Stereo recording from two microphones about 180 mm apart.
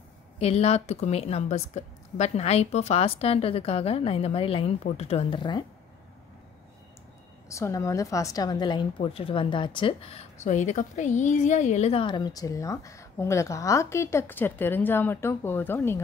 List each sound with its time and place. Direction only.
0.4 s a woman's voice: 35° left (ahead or behind)
7.4 s a woman's voice: 15° left (ahead or behind)